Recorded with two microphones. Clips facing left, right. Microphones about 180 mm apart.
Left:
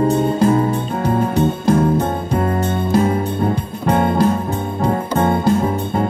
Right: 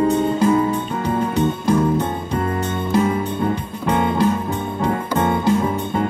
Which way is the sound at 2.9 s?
35° left (ahead or behind).